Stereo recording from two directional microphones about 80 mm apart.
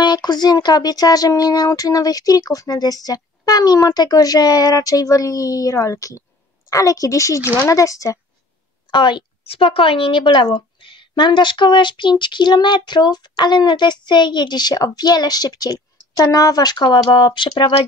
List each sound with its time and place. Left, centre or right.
0.0 s speech: left
8.9 s a woman's voice: left
10.0 s a woman's voice: left